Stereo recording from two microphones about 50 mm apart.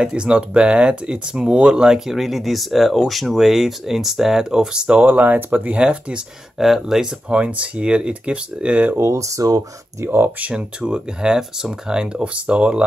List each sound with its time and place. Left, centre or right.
0.0 s speech: right
1.9 s speech: centre
5.0 s speech: right
5.8 s speech: right
6.6 s speech: centre
7.2 s speech: right
8.9 s speech: right
10.0 s speech: right
10.4 s speech: right